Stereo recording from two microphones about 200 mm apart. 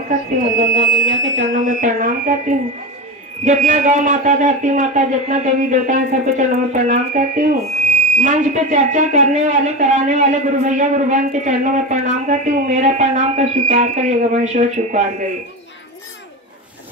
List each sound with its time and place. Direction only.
0.7 s speech: 40° right (ahead or behind)